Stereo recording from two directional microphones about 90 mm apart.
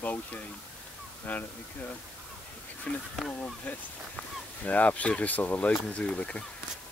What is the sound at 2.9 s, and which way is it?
Speech, 10° left (ahead or behind).